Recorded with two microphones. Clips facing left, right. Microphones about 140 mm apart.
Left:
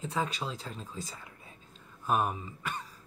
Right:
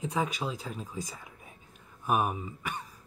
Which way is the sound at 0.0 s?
10° right (ahead or behind).